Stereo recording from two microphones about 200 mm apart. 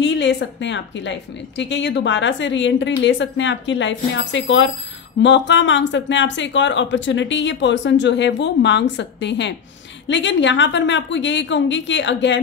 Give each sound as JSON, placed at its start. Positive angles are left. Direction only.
{"t": 0.0, "sound": "a woman's voice", "side_deg": 60}